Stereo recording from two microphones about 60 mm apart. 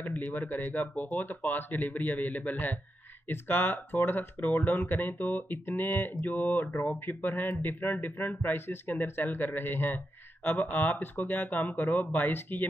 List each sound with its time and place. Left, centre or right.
0.0 s speech: left